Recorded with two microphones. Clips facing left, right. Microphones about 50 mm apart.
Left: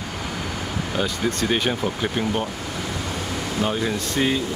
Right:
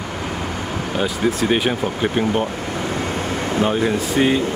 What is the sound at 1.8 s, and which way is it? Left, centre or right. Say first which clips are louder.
Speech: right 4 dB; right.